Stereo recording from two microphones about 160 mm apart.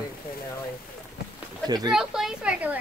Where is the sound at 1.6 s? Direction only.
25° right (ahead or behind).